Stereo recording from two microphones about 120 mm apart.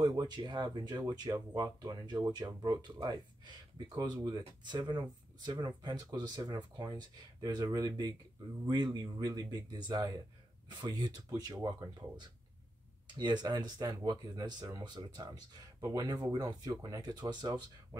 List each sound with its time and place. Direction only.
0.0 s speech: 35° right (ahead or behind)
13.2 s speech: 35° right (ahead or behind)